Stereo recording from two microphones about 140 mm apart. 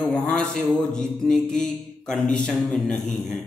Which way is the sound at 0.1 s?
5° left (ahead or behind).